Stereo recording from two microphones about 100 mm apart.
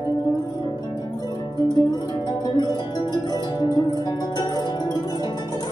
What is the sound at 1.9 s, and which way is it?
Music, 40° left (ahead or behind).